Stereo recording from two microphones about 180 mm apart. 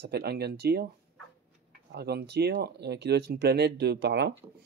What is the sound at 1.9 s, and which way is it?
Speech, 65° right (ahead or behind).